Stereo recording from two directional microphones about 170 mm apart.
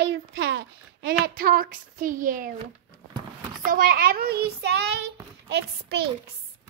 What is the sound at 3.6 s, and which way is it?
A child's voice, 55° right (ahead or behind).